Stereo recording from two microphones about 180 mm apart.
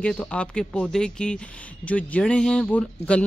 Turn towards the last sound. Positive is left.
turn(degrees=5)  # may be behind; listen again after turning